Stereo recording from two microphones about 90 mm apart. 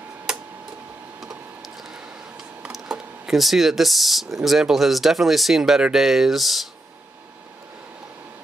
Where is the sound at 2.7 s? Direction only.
5° right (ahead or behind).